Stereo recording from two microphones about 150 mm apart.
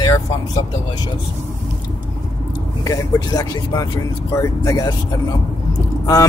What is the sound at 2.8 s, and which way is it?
Speech, 20° left (ahead or behind).